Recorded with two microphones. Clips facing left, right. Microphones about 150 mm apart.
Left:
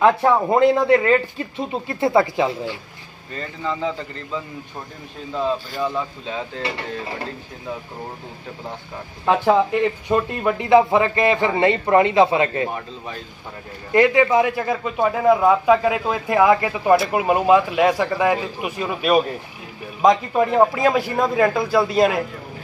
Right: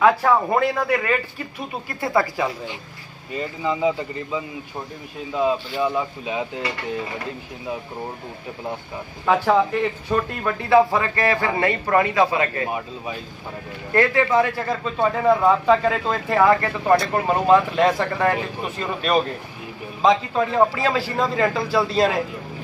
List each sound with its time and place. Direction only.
0.0 s speech: 20° left (ahead or behind)
3.3 s a man's voice: 10° right (ahead or behind)
5.8 s a man's voice: 15° right (ahead or behind)
9.2 s a man's voice: 20° left (ahead or behind)
12.6 s a man's voice: 10° right (ahead or behind)
13.9 s a man's voice: 15° left (ahead or behind)